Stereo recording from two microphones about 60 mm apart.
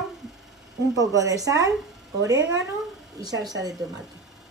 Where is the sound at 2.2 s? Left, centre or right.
Right.